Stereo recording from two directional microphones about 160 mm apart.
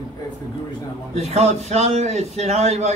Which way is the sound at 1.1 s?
40° right (ahead or behind).